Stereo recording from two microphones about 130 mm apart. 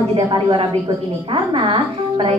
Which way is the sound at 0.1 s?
40° right (ahead or behind).